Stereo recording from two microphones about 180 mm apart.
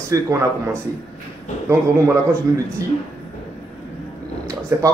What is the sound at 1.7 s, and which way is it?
Speech, 15° right (ahead or behind).